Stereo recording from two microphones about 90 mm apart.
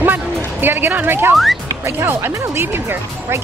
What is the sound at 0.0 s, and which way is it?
Music, 20° right (ahead or behind).